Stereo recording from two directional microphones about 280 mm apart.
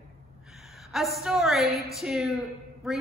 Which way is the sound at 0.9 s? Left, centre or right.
Centre.